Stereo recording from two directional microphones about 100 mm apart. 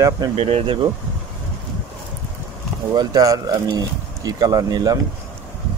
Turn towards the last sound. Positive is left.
turn(degrees=-40)  # may be behind; listen again after turning